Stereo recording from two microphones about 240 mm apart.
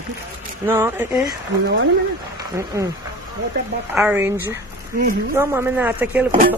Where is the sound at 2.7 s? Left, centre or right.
Centre.